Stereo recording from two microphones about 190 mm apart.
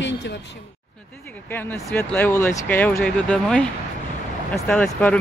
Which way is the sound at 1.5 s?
10° left (ahead or behind).